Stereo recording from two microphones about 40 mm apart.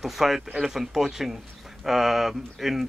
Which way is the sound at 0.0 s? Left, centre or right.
Centre.